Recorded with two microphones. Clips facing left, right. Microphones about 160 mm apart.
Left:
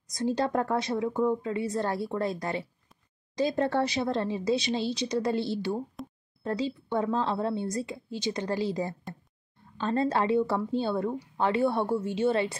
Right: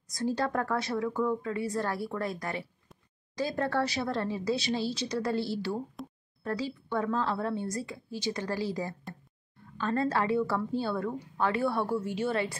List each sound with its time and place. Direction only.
0.1 s a woman's voice: 20° left (ahead or behind)
6.0 s a sound: centre (ahead or behind)
6.4 s a woman's voice: 25° left (ahead or behind)